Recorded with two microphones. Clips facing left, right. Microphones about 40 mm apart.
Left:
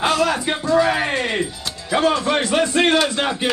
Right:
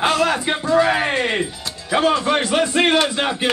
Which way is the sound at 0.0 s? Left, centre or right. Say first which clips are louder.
Right 1 dB; right.